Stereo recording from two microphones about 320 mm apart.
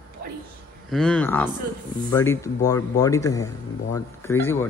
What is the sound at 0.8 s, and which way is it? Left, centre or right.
Speech, centre.